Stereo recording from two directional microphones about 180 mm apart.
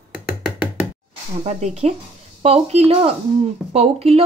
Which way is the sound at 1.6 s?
35° right (ahead or behind).